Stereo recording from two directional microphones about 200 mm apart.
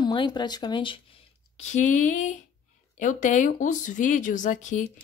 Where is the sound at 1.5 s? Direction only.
40° left (ahead or behind).